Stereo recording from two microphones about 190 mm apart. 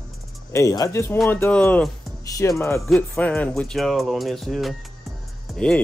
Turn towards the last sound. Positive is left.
turn(degrees=5)  # may be behind; listen again after turning